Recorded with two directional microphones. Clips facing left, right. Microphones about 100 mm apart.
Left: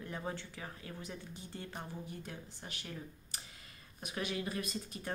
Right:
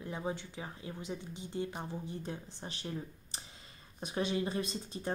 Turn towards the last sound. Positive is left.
turn(degrees=-30)  # may be behind; listen again after turning